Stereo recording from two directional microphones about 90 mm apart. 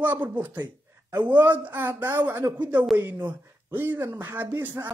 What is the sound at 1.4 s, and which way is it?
Speech, 20° right (ahead or behind).